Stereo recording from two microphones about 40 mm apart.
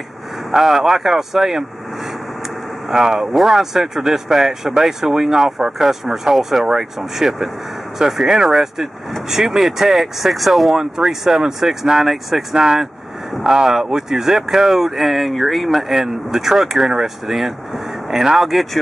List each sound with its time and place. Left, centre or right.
0.6 s speech: centre
2.9 s speech: centre
16.0 s speech: centre